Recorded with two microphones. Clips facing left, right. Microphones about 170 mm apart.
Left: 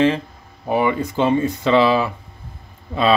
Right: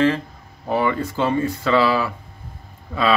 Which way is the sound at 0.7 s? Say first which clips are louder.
Left 2 dB; 15° left (ahead or behind).